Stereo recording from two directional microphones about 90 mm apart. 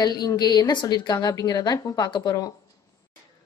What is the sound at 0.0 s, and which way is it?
A woman's voice, 50° left (ahead or behind).